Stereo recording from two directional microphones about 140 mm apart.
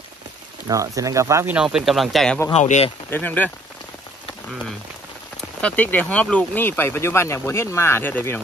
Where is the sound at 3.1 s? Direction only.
15° left (ahead or behind).